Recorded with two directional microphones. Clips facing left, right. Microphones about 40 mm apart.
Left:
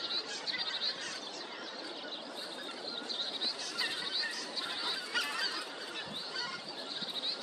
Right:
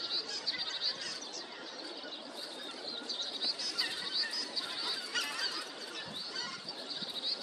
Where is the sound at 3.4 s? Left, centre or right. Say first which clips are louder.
Right 1 dB; left.